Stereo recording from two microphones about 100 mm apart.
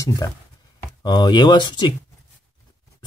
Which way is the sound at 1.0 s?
50° left (ahead or behind).